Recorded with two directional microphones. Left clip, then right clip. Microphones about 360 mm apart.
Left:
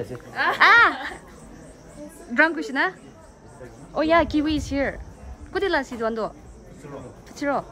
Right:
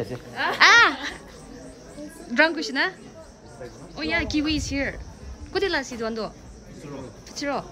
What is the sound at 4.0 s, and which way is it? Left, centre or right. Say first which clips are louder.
A woman's voice: left 6 dB; centre.